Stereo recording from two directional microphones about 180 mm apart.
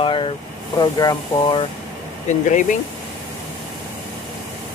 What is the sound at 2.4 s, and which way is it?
Speech, 45° left (ahead or behind).